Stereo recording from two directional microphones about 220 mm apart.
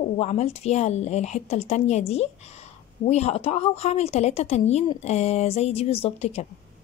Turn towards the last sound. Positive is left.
turn(degrees=30)  # may be behind; listen again after turning